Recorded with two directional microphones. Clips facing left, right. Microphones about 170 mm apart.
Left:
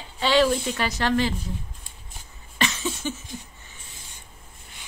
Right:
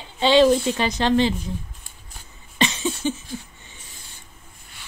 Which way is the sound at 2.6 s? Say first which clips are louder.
Right 4 dB; 20° right (ahead or behind).